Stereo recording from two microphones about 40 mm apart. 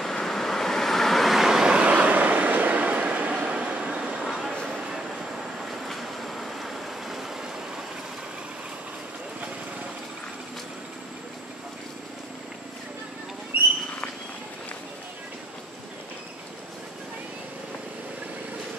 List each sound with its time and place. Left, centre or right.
0.0 s vehicle: centre
1.6 s vehicle: right
1.9 s vehicle: right
4.2 s a sound: centre
4.6 s train: centre
5.9 s train: centre
13.5 s a sound: right